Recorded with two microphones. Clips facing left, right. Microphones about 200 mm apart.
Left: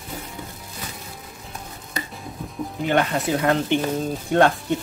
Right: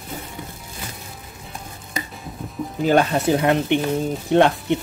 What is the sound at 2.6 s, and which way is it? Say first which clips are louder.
Music: right 1 dB; 5° left (ahead or behind).